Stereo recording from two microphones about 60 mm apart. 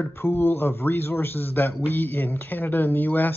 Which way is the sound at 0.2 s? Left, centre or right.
Left.